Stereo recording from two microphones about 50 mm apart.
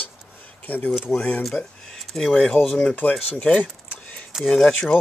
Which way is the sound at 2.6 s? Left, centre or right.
Left.